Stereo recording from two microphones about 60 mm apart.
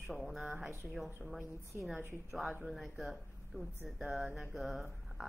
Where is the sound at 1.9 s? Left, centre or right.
Right.